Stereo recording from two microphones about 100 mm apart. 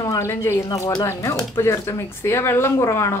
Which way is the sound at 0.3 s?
25° left (ahead or behind).